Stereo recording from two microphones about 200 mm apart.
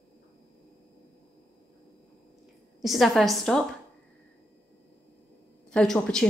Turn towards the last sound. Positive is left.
turn(degrees=5)  # may be behind; listen again after turning